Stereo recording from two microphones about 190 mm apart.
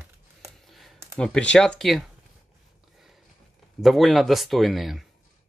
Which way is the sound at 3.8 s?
Centre (ahead or behind).